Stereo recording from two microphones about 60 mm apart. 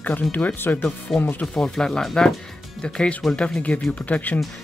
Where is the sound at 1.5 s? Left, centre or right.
Centre.